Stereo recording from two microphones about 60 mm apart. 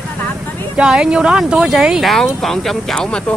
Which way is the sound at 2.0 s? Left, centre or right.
Centre.